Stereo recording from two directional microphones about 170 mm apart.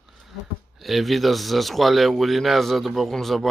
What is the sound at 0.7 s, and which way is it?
Speech, centre (ahead or behind).